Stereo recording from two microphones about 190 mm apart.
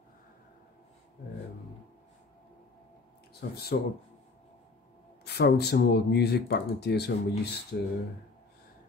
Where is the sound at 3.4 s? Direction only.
55° left (ahead or behind).